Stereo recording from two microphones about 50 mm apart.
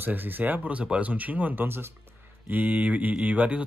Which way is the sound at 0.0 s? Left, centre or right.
Right.